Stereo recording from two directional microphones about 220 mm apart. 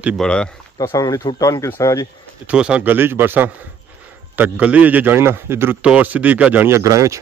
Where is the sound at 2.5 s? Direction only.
5° right (ahead or behind).